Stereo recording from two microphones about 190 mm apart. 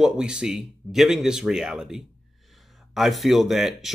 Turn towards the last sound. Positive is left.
turn(degrees=0)  # may be behind; listen again after turning